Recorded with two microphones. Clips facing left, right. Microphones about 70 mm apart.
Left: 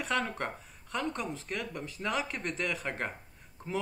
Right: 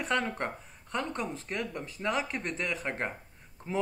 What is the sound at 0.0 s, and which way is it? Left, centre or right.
A man's voice, right.